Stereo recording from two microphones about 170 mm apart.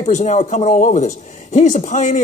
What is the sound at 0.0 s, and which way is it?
Speech, 45° left (ahead or behind).